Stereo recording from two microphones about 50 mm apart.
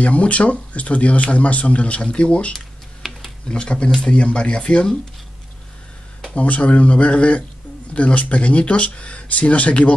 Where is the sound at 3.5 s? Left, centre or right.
Centre.